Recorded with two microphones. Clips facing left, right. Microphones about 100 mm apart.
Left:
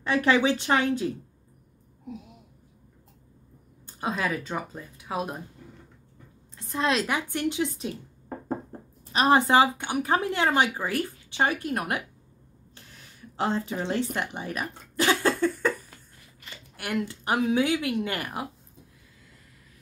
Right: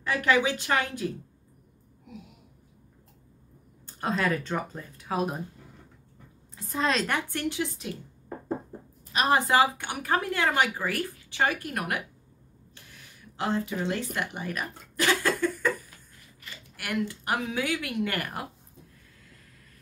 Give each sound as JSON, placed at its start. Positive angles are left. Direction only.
{"t": 0.0, "sound": "speech", "side_deg": 25}
{"t": 3.8, "sound": "speech", "side_deg": 10}
{"t": 6.7, "sound": "a woman's voice", "side_deg": 0}
{"t": 9.1, "sound": "speech", "side_deg": 30}
{"t": 13.4, "sound": "speech", "side_deg": 30}
{"t": 16.7, "sound": "speech", "side_deg": 25}